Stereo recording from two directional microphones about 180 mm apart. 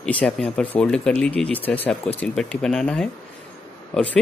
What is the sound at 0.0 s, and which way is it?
Speech, 5° left (ahead or behind).